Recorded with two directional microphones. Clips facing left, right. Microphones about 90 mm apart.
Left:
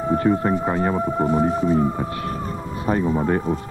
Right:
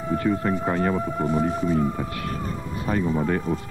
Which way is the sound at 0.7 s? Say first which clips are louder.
Left 2 dB; 20° left (ahead or behind).